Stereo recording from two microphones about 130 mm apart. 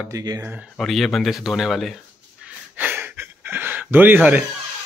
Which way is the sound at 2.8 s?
15° right (ahead or behind).